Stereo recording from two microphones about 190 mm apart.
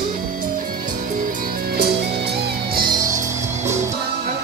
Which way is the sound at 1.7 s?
55° right (ahead or behind).